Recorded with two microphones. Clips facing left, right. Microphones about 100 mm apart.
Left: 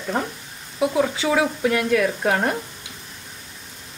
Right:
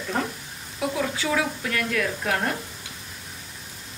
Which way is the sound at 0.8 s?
25° left (ahead or behind).